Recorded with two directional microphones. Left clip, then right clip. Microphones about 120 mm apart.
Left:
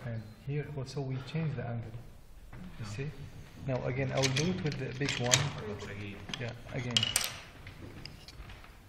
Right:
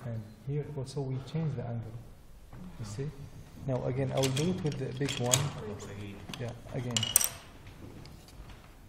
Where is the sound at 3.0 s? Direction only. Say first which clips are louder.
Right 3 dB; 40° right (ahead or behind).